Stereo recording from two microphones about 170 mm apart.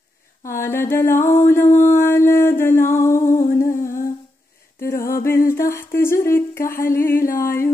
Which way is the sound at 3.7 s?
50° left (ahead or behind).